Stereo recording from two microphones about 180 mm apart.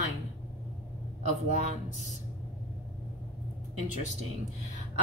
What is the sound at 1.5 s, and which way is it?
Speech, 40° right (ahead or behind).